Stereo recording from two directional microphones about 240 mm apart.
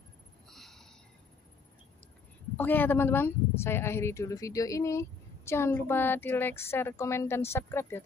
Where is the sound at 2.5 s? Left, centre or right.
Centre.